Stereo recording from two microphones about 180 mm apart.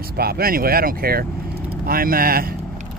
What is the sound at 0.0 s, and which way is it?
Speech, 60° right (ahead or behind).